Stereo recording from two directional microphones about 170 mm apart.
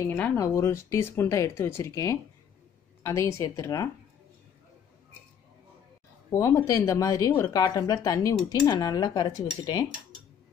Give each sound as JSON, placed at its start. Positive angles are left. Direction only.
{"t": 0.1, "sound": "speech", "side_deg": 15}
{"t": 6.3, "sound": "speech", "side_deg": 20}